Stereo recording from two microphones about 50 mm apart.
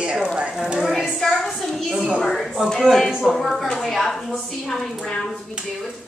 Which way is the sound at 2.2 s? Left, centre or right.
Centre.